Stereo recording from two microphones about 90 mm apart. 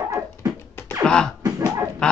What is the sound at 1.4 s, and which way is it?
Chicken, 45° right (ahead or behind).